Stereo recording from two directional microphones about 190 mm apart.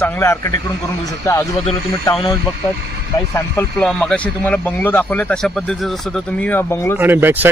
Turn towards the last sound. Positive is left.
turn(degrees=-10)  # may be behind; listen again after turning